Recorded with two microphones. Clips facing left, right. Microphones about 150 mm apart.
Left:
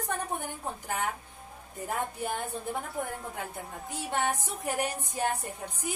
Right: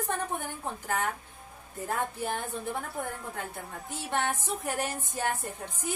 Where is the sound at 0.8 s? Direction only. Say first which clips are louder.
Right 2 dB; 15° left (ahead or behind).